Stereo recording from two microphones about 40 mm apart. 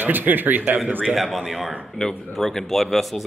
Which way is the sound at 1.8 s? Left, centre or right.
Centre.